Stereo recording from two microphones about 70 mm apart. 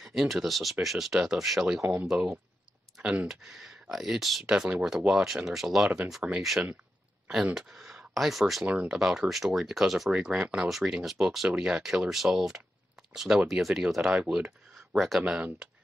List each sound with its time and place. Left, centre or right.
0.0 s speech: centre
4.6 s speech: centre
4.8 s speech: centre
6.2 s speech: centre
7.5 s speech: centre
8.6 s speech: centre
10.1 s speech: centre
15.0 s speech: centre
15.2 s speech: centre